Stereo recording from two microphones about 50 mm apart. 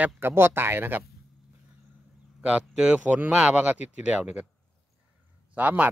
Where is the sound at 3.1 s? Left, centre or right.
Right.